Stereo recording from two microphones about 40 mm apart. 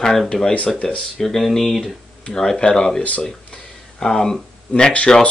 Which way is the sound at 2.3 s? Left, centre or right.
Centre.